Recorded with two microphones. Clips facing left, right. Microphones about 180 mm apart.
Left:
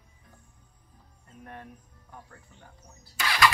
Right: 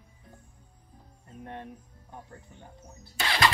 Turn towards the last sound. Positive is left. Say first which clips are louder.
# left 1 dB
turn(degrees=-30)  # may be behind; listen again after turning